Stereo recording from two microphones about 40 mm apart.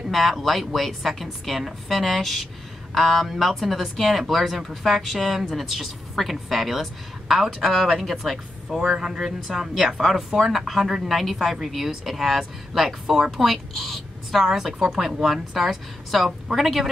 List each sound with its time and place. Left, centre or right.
0.1 s a woman's voice: centre
14.7 s speech: centre